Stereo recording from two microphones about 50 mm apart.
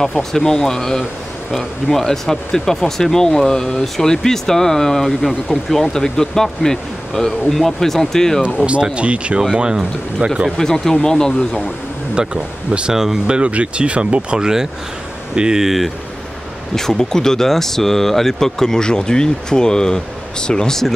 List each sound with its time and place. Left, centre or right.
0.2 s speech: centre
8.5 s speech: right
10.6 s speech: centre
12.2 s speech: centre
13.4 s speech: right
15.6 s speech: centre
16.7 s speech: centre